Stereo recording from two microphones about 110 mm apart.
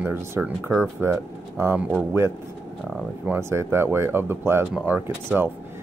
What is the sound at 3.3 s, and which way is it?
Speech, 25° right (ahead or behind).